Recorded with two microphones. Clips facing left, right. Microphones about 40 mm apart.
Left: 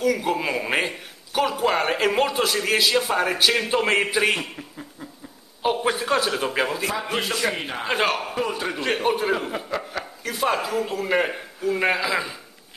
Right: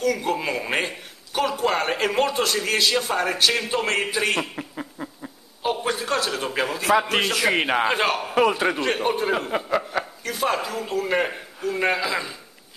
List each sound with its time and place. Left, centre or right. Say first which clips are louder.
0.0 s a man's voice: left 1 dB; centre
4.4 s a sound: right 5 dB; right
5.6 s a man's voice: left 2 dB; centre
6.9 s a man's voice: right 7 dB; right
7.5 s a man's voice: right 8 dB; right
7.9 s a man's voice: even; centre
8.4 s a man's voice: right 6 dB; right
8.8 s a man's voice: even; centre
9.7 s speech: right 5 dB; centre
10.2 s a man's voice: left 3 dB; centre